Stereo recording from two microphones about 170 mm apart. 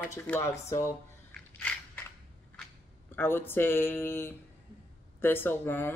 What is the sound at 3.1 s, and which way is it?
Speech, 10° left (ahead or behind).